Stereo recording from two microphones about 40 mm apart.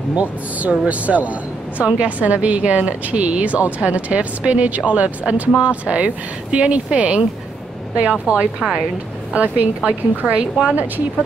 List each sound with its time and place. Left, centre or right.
0.1 s a woman's voice: right
8.5 s a woman's voice: centre
9.3 s a woman's voice: right